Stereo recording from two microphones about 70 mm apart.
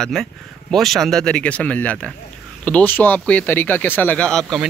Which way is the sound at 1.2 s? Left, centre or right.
Centre.